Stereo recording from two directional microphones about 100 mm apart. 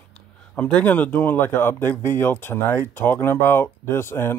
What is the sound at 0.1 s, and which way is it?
Speech, 10° left (ahead or behind).